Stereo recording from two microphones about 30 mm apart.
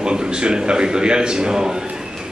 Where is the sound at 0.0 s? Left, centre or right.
Right.